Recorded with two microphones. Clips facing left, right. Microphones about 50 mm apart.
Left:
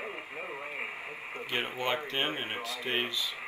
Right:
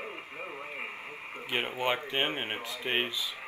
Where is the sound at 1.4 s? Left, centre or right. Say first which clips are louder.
Right 2 dB; centre.